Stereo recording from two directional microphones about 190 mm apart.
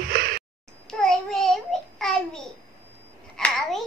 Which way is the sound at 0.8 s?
Centre (ahead or behind).